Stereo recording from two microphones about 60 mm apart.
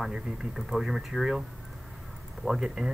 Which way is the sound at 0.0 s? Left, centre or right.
Centre.